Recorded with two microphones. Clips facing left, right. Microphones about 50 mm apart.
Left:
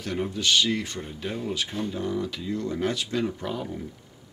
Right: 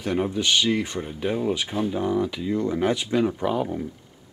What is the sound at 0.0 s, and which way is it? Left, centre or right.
Speech, centre.